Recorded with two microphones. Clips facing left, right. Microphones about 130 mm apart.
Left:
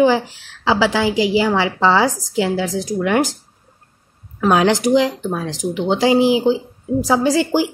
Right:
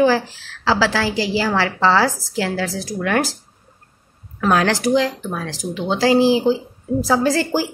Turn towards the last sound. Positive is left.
turn(degrees=15)  # may be behind; listen again after turning